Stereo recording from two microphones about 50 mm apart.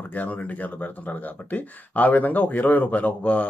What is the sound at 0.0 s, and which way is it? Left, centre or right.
Speech, left.